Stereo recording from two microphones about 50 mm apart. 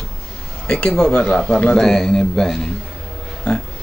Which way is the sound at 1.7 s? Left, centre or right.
Centre.